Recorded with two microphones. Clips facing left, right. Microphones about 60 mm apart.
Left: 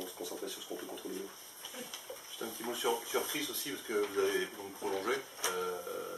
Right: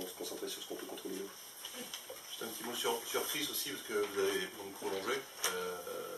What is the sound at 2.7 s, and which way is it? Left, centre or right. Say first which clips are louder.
Speech: left 3 dB; centre.